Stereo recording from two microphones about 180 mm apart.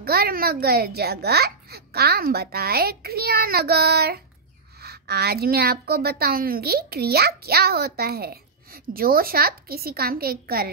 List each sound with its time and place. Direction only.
0.0 s a child's voice: 60° right (ahead or behind)